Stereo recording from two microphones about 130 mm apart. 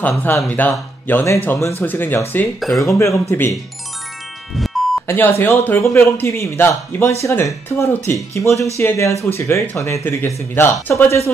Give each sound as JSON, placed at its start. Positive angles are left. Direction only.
{"t": 0.2, "sound": "speech", "side_deg": 15}
{"t": 5.0, "sound": "speech", "side_deg": 15}